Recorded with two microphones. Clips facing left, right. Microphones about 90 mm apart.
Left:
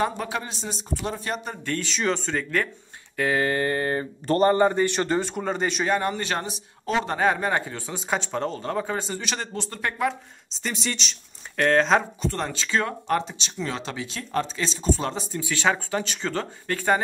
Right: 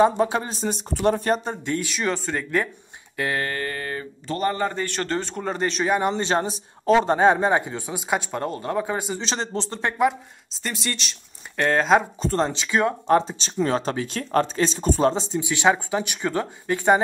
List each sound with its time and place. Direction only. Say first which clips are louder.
0.0 s speech: right 7 dB; 25° right (ahead or behind)
0.6 s speech: right 5 dB; 50° right (ahead or behind)
1.3 s speech: right 7 dB; 30° right (ahead or behind)
1.6 s speech: right 1 dB; 10° right (ahead or behind)
3.4 s a sound: left 5 dB; 20° left (ahead or behind)
4.6 s a man's voice: left 4 dB; 20° left (ahead or behind); by 5.9 s centre (ahead or behind)
5.9 s speech: right 5 dB; 20° right (ahead or behind); by 7.1 s 35° right (ahead or behind)
7.1 s speech: right 5 dB; 25° right (ahead or behind)
9.2 s speech: right 4 dB; 30° right (ahead or behind)
10.5 s speech: even; centre (ahead or behind)
12.2 s speech: right 5 dB; 30° right (ahead or behind); by 15.0 s 50° right (ahead or behind)
15.0 s speech: right 7 dB; 25° right (ahead or behind)